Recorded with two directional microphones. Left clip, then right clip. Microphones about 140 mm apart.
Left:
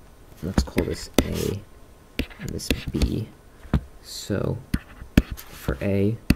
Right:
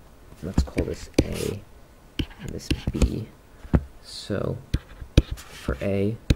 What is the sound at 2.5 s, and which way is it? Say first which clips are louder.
Speech: left 1 dB; 30° left (ahead or behind).